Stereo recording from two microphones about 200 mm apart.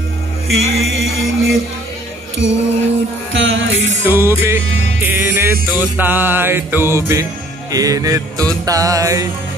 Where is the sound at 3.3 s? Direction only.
70° right (ahead or behind).